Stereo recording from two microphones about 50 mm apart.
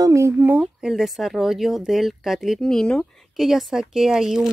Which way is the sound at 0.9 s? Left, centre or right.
Centre.